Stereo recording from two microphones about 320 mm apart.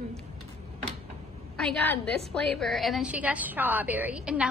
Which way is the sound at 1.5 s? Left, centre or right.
Centre.